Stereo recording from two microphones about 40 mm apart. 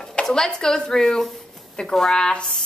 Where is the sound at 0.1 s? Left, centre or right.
Centre.